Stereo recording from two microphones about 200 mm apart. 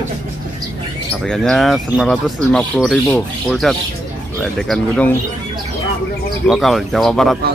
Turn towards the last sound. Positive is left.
turn(degrees=0)  # may be behind; listen again after turning